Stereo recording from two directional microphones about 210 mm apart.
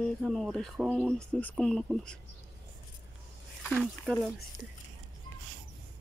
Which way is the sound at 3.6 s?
Centre (ahead or behind).